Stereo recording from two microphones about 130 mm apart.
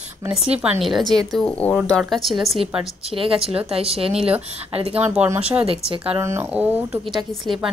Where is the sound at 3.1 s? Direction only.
45° right (ahead or behind).